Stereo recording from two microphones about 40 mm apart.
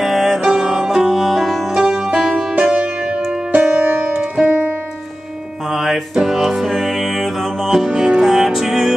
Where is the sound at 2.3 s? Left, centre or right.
Right.